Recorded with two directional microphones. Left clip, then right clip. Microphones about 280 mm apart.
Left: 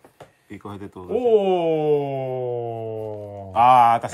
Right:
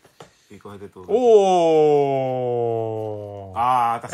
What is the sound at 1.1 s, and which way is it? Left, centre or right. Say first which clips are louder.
Speech: right 4 dB; centre.